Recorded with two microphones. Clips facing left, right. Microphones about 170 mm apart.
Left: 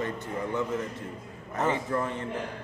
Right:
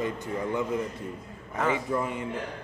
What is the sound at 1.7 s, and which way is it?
Speech, 10° right (ahead or behind).